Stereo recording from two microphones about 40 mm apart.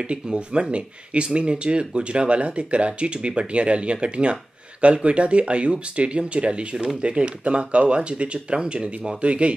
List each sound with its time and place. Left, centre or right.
0.1 s speech: right